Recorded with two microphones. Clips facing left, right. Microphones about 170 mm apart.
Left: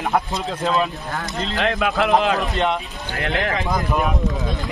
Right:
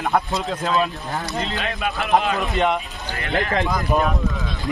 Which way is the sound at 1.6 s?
70° left (ahead or behind).